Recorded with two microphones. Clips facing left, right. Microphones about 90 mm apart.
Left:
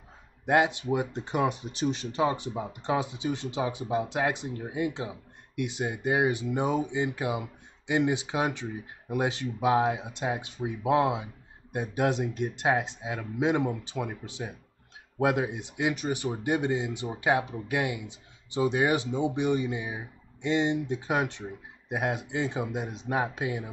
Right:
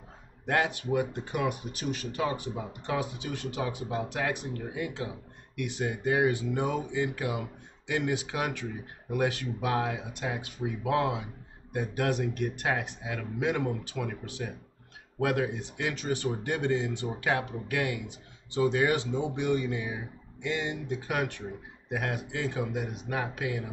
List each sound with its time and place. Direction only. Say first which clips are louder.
0.5 s speech: left 4 dB; 20° left (ahead or behind)